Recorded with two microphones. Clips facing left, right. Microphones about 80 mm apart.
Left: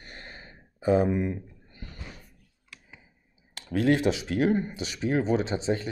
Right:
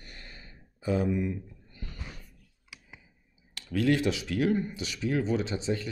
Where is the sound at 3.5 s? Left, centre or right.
Left.